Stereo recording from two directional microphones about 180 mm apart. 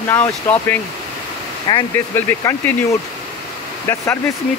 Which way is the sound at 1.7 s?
25° left (ahead or behind).